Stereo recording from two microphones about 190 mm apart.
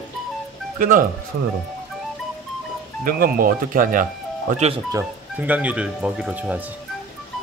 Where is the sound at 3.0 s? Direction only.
45° right (ahead or behind).